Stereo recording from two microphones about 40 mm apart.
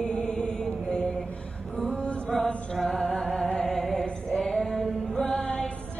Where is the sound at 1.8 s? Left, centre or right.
Left.